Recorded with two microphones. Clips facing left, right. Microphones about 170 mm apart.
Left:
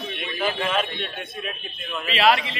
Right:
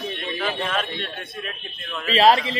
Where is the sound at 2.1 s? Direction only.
35° right (ahead or behind).